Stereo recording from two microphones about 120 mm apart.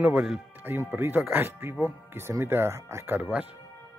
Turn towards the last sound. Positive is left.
turn(degrees=-15)  # may be behind; listen again after turning